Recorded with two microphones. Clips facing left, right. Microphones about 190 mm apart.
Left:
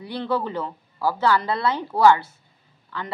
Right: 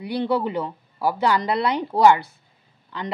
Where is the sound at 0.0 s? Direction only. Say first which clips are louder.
Right 3 dB; 15° right (ahead or behind).